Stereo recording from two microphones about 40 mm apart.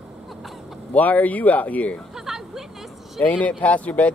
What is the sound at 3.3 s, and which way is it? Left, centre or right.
Speech, left.